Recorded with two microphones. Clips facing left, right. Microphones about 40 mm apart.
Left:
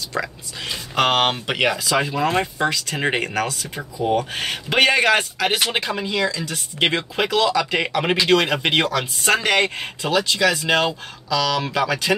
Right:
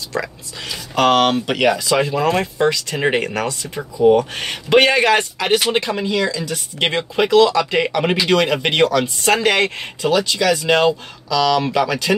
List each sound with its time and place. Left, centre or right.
0.7 s speech: centre
1.9 s speech: centre